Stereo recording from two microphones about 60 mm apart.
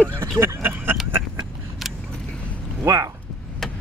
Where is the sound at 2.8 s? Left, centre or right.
Right.